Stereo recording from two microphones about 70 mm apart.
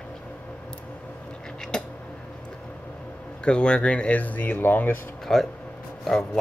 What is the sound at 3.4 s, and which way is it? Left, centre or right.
Speech, centre.